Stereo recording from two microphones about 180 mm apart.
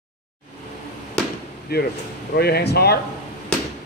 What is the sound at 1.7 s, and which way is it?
Speech, 60° left (ahead or behind).